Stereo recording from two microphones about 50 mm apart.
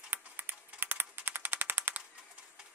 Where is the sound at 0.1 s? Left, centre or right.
Right.